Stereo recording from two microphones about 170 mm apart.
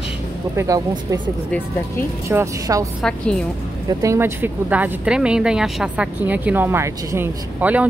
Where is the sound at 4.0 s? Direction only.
15° right (ahead or behind).